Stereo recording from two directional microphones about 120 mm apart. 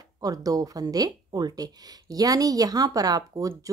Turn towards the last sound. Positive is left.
turn(degrees=-30)  # may be behind; listen again after turning